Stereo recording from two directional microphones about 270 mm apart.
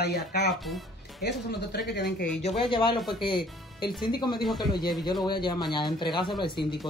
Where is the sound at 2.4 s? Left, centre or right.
Left.